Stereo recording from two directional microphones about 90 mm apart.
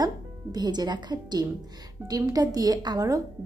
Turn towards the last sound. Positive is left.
turn(degrees=-40)  # may be behind; listen again after turning